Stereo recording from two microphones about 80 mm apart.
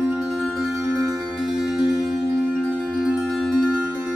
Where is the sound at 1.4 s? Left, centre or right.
Centre.